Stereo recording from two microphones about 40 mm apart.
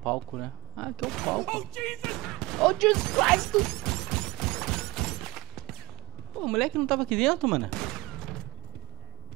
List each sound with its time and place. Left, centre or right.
0.0 s speech: centre